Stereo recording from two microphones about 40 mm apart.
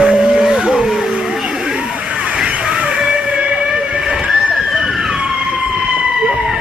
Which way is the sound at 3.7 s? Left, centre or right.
Centre.